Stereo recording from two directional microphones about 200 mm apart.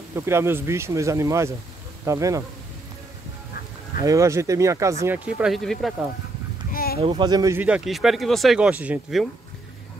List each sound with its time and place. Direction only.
0.1 s speech: 15° right (ahead or behind)
4.0 s speech: 15° right (ahead or behind)
6.7 s a sound: 45° left (ahead or behind)
7.0 s speech: 25° right (ahead or behind); by 9.3 s 5° right (ahead or behind)